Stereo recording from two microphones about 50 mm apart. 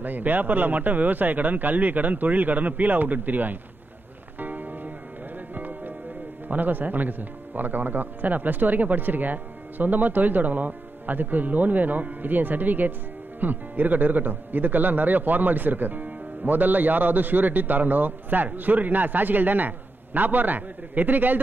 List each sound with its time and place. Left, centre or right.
0.0 s a man's voice: right
4.4 s music: right
6.5 s a man's voice: right